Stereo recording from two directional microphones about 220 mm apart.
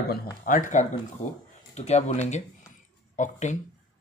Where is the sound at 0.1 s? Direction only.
40° left (ahead or behind).